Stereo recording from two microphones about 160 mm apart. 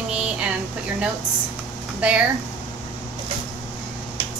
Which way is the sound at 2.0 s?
10° right (ahead or behind).